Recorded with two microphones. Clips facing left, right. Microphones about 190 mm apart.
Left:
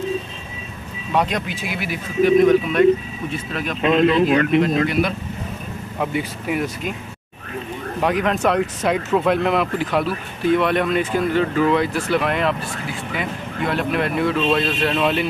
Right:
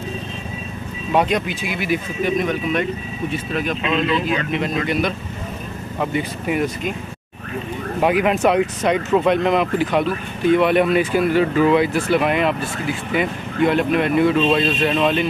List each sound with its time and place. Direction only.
1.1 s speech: centre (ahead or behind)
3.8 s speech: 55° left (ahead or behind)
4.6 s speech: centre (ahead or behind)
8.0 s speech: 5° right (ahead or behind)